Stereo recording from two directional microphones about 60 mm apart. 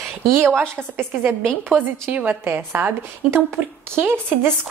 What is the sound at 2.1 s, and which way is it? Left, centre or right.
Speech, right.